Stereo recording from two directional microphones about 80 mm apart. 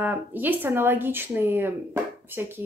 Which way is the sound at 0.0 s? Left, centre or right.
Right.